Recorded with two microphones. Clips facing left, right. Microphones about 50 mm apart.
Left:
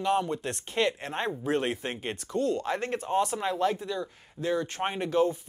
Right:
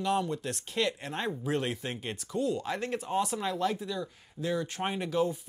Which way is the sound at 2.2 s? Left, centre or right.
Centre.